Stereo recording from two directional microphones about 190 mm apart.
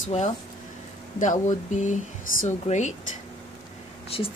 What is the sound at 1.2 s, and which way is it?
Speech, 40° left (ahead or behind).